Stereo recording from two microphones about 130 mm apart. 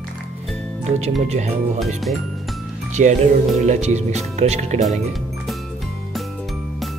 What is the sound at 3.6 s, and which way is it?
Speech, 60° right (ahead or behind).